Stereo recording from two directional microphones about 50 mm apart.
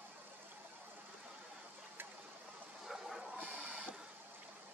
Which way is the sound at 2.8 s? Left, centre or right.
Centre.